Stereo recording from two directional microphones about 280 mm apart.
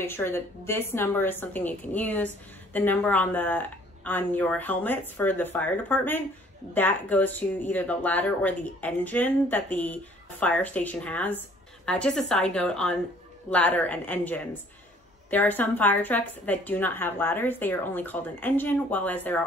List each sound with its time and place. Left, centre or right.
0.0 s a woman's voice: centre